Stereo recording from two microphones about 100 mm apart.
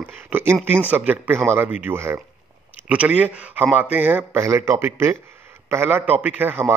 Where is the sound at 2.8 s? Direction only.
10° right (ahead or behind).